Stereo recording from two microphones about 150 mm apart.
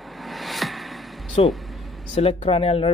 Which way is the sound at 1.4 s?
40° left (ahead or behind).